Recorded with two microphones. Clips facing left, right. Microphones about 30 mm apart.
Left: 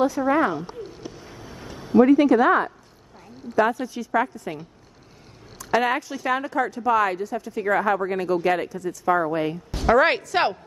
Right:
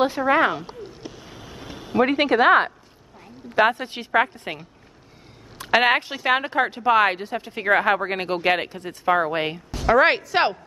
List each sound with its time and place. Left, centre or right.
0.0 s speech: right
0.3 s speech: right
1.3 s a sound: right
1.9 s speech: right
3.5 s a woman's voice: right
5.7 s a woman's voice: right
6.0 s speech: right
9.8 s speech: centre